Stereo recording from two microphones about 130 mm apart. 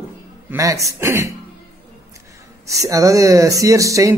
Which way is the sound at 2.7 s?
25° right (ahead or behind).